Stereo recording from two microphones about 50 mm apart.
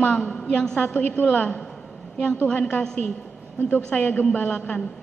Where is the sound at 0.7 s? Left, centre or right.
Left.